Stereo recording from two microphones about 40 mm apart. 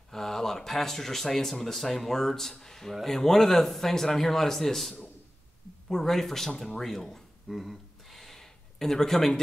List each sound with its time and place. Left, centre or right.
0.1 s speech: centre